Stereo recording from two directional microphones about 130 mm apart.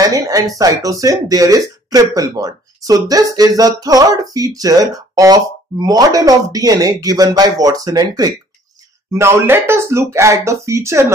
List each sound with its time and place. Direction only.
0.0 s speech: 30° right (ahead or behind)